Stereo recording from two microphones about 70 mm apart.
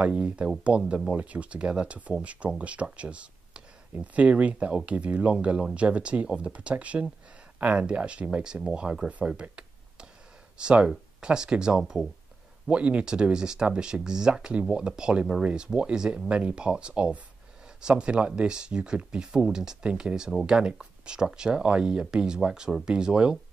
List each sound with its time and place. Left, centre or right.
0.0 s speech: centre